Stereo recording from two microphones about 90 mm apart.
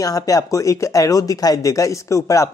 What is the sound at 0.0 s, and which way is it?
Speech, 40° left (ahead or behind).